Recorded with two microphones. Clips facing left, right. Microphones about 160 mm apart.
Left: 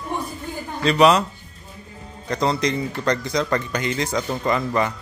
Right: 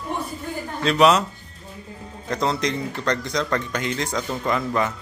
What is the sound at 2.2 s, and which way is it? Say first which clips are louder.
A man's voice: left 2 dB; centre (ahead or behind).